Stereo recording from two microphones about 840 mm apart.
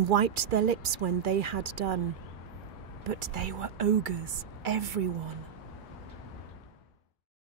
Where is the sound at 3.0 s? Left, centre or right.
Right.